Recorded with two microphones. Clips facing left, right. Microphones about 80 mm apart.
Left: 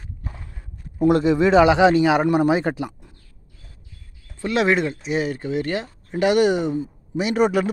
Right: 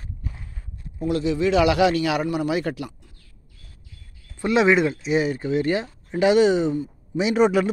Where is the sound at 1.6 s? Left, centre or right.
Left.